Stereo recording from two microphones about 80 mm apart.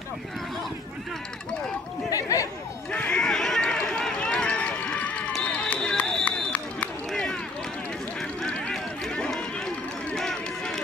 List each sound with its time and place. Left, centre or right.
2.0 s speech: left
2.9 s run: centre
8.2 s a sound: centre
10.1 s run: centre